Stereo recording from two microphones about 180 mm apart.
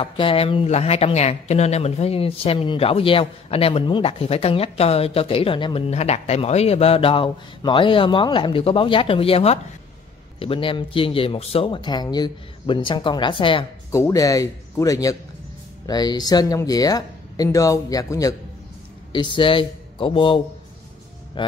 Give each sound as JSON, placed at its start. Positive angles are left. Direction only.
{"t": 0.0, "sound": "speech", "side_deg": 30}
{"t": 13.9, "sound": "speech", "side_deg": 15}
{"t": 21.4, "sound": "speech", "side_deg": 30}